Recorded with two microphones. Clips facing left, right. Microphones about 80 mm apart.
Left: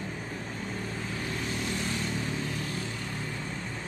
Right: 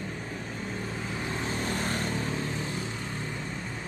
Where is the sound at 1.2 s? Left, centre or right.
Right.